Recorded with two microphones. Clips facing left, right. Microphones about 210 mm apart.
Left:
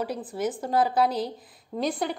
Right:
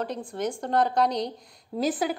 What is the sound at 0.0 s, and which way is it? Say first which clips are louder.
A woman's voice: left 1 dB; 5° left (ahead or behind).